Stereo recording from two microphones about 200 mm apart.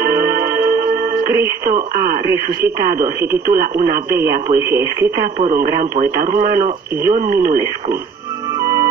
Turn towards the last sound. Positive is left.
turn(degrees=-45)  # may be behind; listen again after turning